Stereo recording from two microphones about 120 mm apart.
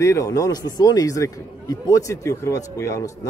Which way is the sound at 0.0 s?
25° left (ahead or behind).